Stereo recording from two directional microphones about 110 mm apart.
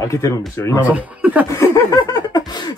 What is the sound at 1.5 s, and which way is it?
Laughter, 30° left (ahead or behind).